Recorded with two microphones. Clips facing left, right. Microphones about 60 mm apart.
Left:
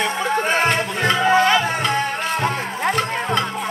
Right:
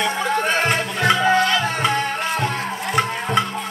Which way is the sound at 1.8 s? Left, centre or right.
Centre.